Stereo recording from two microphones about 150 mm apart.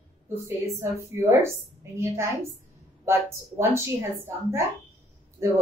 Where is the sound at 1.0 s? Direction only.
15° right (ahead or behind).